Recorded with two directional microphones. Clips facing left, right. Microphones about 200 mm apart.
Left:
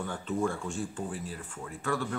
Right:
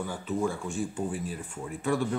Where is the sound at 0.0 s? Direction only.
5° right (ahead or behind).